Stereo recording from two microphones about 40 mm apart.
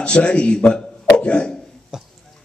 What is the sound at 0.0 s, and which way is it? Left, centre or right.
A man's voice, left.